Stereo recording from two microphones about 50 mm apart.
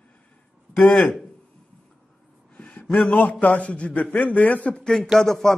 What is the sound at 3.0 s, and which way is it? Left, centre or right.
A man's voice, left.